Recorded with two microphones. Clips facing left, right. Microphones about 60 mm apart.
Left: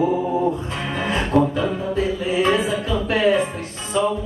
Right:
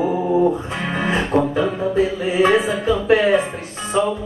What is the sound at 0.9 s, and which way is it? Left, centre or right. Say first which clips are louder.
Music: right 3 dB; right.